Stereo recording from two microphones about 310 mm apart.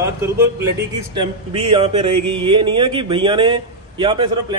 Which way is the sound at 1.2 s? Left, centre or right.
Centre.